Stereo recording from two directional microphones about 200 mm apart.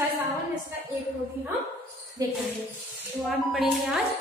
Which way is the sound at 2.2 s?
20° right (ahead or behind).